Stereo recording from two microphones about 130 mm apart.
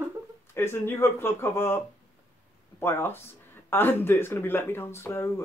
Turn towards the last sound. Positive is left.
turn(degrees=20)  # may be behind; listen again after turning